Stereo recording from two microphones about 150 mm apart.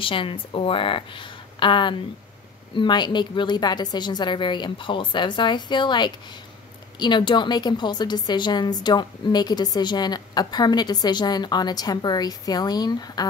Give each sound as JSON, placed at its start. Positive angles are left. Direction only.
{"t": 0.0, "sound": "a woman's voice", "side_deg": 35}